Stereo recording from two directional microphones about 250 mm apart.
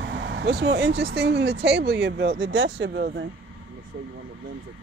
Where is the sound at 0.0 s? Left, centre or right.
Right.